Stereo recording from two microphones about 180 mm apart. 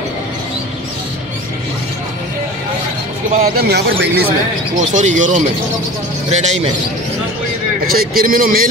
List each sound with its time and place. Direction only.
3.5 s speech: 65° right (ahead or behind)
4.7 s a man's voice: 45° right (ahead or behind)
6.4 s a man's voice: 40° right (ahead or behind)
7.8 s a man's voice: 55° right (ahead or behind)